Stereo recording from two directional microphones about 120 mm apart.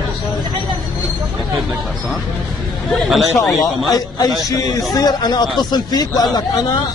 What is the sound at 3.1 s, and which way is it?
Speech, centre (ahead or behind).